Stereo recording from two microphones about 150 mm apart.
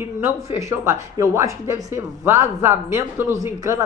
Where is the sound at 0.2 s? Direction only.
20° right (ahead or behind).